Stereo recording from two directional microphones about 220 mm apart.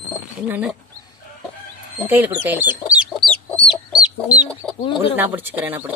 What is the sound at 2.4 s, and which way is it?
Chicken, 10° right (ahead or behind).